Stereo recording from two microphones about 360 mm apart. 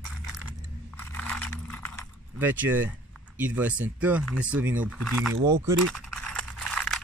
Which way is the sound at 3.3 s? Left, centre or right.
Centre.